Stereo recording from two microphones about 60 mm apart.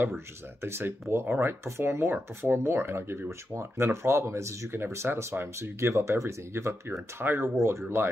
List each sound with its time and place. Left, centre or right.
0.6 s speech: right
5.6 s speech: right